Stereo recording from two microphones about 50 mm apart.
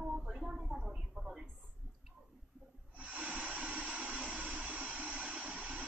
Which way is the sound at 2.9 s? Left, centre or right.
Right.